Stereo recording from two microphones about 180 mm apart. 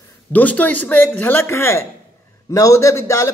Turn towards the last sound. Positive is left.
turn(degrees=15)  # may be behind; listen again after turning